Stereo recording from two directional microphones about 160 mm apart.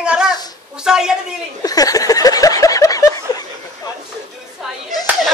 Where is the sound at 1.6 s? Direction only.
25° left (ahead or behind).